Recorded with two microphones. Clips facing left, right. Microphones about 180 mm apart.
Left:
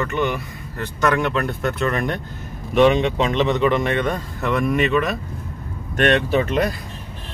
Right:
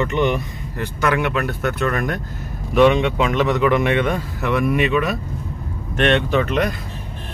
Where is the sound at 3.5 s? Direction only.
10° right (ahead or behind).